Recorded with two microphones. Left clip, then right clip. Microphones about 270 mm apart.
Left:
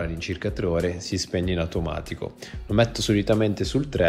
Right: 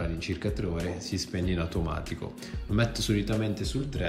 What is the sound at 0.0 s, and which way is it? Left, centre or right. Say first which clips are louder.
Speech: left 4 dB; centre.